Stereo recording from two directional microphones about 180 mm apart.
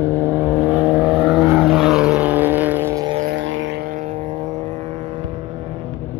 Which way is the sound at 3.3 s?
90° right.